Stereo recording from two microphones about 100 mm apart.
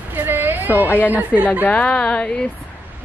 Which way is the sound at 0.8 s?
20° left (ahead or behind).